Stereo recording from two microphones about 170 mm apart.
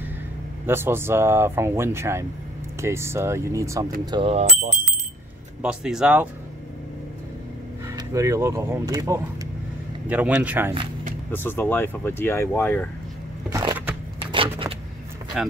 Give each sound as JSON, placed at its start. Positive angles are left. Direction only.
{"t": 0.7, "sound": "speech", "side_deg": -15}
{"t": 4.3, "sound": "speech", "side_deg": -40}
{"t": 5.6, "sound": "speech", "side_deg": -5}
{"t": 7.9, "sound": "speech", "side_deg": -20}
{"t": 10.0, "sound": "speech", "side_deg": -10}
{"t": 11.3, "sound": "speech", "side_deg": 10}
{"t": 13.5, "sound": "crushing", "side_deg": -20}
{"t": 14.3, "sound": "a sound", "side_deg": -30}
{"t": 15.3, "sound": "speech", "side_deg": 0}